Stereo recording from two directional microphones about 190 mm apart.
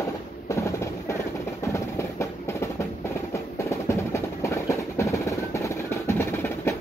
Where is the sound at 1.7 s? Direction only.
15° left (ahead or behind).